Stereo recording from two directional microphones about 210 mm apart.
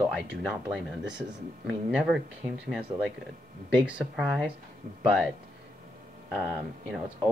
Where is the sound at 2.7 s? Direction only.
5° right (ahead or behind).